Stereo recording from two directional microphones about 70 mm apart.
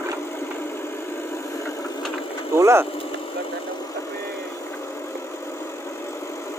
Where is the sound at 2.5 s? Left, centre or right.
Right.